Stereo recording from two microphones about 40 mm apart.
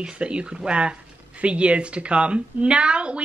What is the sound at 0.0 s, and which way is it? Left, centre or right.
A woman's voice, right.